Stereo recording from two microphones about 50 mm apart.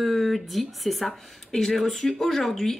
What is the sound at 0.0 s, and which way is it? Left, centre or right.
Speech, centre.